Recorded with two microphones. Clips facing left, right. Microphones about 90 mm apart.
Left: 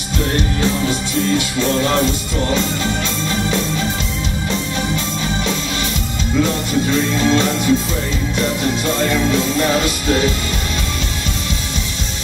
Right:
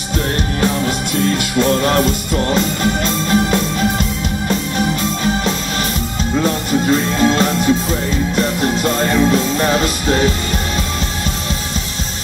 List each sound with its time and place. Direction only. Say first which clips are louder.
1.6 s music: right 4 dB; 45° right (ahead or behind)
6.4 s music: right 2 dB; 40° right (ahead or behind)